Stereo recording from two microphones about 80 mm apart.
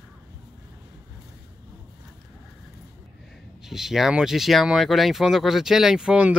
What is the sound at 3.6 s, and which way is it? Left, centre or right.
Speech, centre.